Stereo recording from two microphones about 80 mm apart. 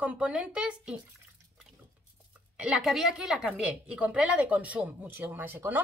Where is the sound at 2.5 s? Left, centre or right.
Centre.